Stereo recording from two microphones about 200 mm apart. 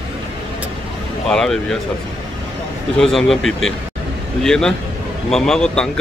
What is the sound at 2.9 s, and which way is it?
Speech, centre (ahead or behind).